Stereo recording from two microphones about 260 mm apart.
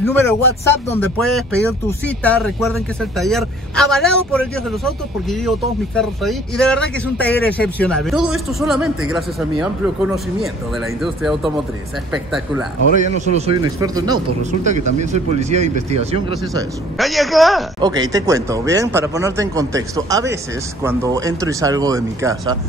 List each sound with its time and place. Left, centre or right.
0.0 s speech: centre
11.0 s speech: centre
13.2 s speech: right
14.6 s speech: right
17.0 s speech: centre
17.7 s speech: centre